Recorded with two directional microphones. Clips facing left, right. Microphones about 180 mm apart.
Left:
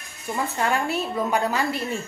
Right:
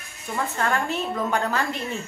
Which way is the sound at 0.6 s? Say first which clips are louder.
Left 1 dB; 10° left (ahead or behind).